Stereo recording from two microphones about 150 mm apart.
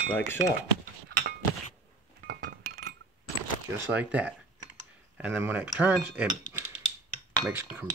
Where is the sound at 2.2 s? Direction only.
80° right.